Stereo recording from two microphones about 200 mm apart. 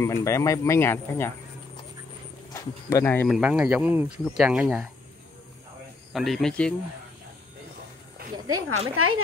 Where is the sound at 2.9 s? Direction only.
15° left (ahead or behind).